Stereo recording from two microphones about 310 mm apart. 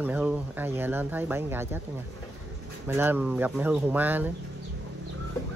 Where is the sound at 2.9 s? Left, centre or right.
Centre.